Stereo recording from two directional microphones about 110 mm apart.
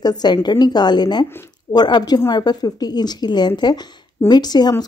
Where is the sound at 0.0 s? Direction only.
40° left (ahead or behind).